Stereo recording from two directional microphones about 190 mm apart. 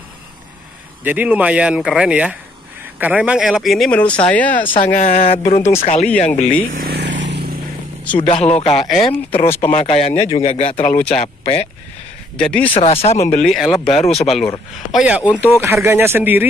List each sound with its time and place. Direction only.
1.0 s speech: 10° right (ahead or behind); by 4.7 s 10° left (ahead or behind)
4.9 s a man's voice: 35° left (ahead or behind)
6.8 s vehicle: 60° right (ahead or behind)
8.2 s a man's voice: 35° left (ahead or behind)
8.7 s speech: centre (ahead or behind)
9.0 s a man's voice: 30° left (ahead or behind)
12.4 s speech: 5° left (ahead or behind)
12.7 s a man's voice: 30° left (ahead or behind)
13.4 s speech: centre (ahead or behind)
13.9 s a man's voice: 35° left (ahead or behind)
14.2 s speech: centre (ahead or behind)